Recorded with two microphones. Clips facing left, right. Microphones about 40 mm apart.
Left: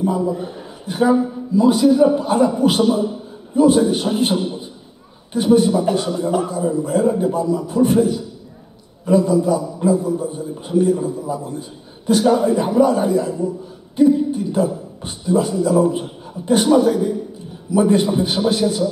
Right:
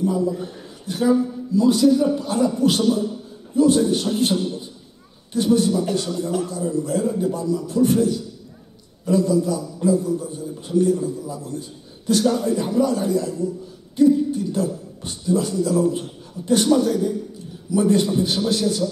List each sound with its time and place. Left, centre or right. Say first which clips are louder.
0.0 s a man's voice: left 2 dB; left